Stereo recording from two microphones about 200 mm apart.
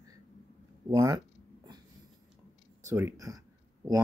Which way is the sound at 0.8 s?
20° right (ahead or behind).